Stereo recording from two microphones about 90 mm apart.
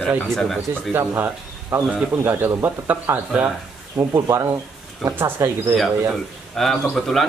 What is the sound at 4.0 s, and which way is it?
Speech, 35° right (ahead or behind).